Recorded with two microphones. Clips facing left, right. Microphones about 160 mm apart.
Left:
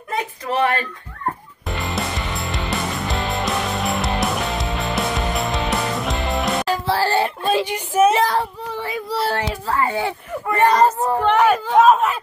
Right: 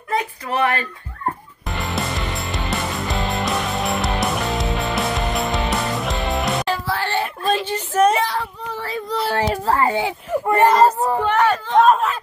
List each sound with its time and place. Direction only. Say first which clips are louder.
0.1 s a sound: right 1 dB; 30° left (ahead or behind)
2.0 s music: even; centre (ahead or behind)
6.9 s a sound: left 8 dB; 35° left (ahead or behind)
7.6 s a sound: even; 10° left (ahead or behind)
8.2 s speech: left 4 dB; 45° left (ahead or behind)
8.8 s child singing: right 1 dB; 10° left (ahead or behind)
9.7 s speech: right 2 dB; 35° right (ahead or behind)
9.9 s speech: right 2 dB; 20° right (ahead or behind)
10.7 s speech: right 1 dB; centre (ahead or behind)